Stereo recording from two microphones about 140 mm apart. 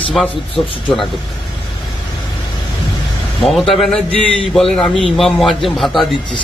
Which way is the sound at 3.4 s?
Centre (ahead or behind).